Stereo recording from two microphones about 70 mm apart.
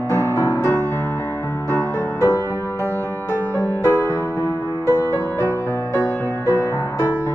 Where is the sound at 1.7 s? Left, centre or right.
Left.